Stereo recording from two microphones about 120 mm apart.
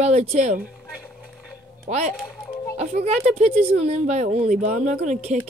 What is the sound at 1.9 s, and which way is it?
Speech, 70° right (ahead or behind).